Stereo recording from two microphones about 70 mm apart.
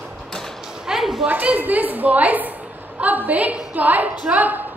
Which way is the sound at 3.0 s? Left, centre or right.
Right.